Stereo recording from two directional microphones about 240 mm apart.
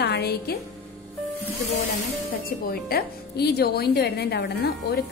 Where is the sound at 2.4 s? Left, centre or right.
Left.